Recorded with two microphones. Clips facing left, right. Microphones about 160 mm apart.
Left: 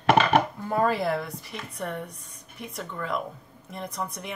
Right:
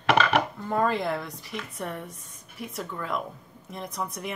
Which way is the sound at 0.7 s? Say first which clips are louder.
Left 1 dB; 5° left (ahead or behind).